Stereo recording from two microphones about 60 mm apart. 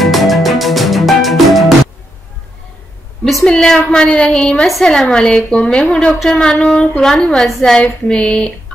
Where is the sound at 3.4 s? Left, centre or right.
Centre.